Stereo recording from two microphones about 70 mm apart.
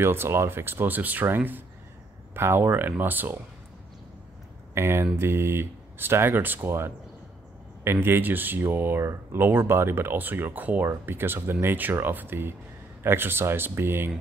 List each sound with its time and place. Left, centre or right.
0.0 s speech: right
4.7 s speech: right